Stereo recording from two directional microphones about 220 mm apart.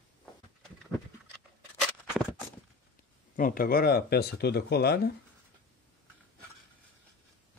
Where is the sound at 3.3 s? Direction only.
40° left (ahead or behind).